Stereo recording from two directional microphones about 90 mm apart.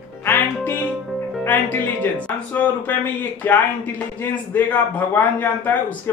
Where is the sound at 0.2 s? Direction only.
25° left (ahead or behind).